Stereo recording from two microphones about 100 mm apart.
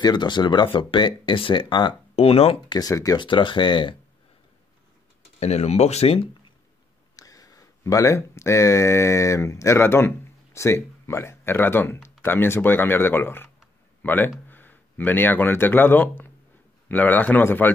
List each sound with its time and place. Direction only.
0.0 s speech: 45° left (ahead or behind)
2.1 s speech: 80° left
2.7 s speech: 35° left (ahead or behind)
3.2 s speech: 55° left (ahead or behind)
5.4 s speech: 90° left
7.2 s speech: 35° left (ahead or behind); by 17.7 s 20° left (ahead or behind)